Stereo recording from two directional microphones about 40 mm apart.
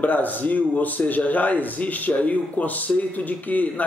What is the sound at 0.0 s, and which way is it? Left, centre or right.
A man's voice, left.